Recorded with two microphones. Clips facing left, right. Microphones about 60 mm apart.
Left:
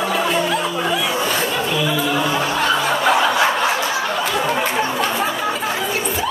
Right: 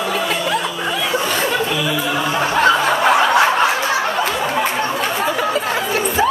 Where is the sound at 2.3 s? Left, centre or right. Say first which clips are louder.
Right 2 dB; right.